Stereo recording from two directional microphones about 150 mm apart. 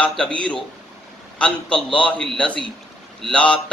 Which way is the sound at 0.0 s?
5° left (ahead or behind).